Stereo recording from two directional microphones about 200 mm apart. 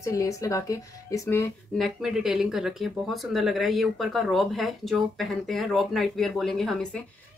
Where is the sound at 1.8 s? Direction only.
Centre (ahead or behind).